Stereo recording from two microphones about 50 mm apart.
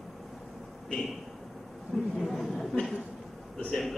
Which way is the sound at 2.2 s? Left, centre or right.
Centre.